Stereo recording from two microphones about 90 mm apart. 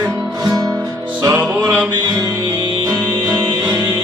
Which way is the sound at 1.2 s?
30° right (ahead or behind).